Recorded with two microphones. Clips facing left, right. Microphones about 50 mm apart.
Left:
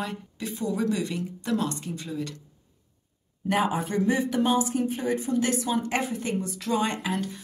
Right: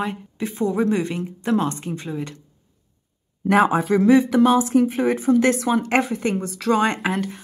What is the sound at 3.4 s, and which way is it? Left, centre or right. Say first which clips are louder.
A woman's voice: right 8 dB; right.